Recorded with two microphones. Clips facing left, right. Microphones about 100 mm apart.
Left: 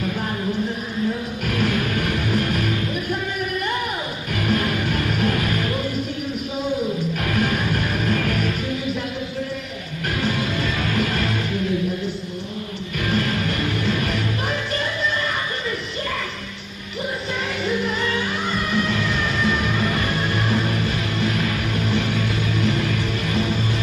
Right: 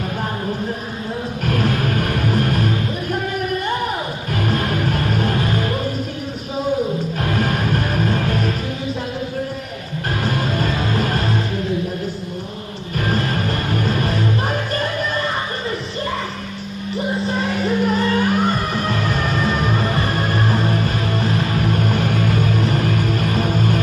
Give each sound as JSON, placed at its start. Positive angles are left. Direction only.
{"t": 1.4, "sound": "music", "side_deg": -40}
{"t": 4.3, "sound": "music", "side_deg": -40}
{"t": 7.2, "sound": "music", "side_deg": -35}
{"t": 10.0, "sound": "music", "side_deg": -40}
{"t": 12.9, "sound": "music", "side_deg": -40}
{"t": 17.3, "sound": "music", "side_deg": -35}